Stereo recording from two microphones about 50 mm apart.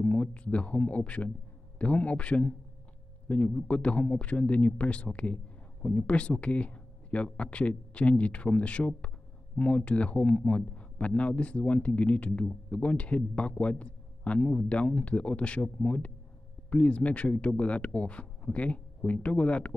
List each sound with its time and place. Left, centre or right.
0.0 s speech: left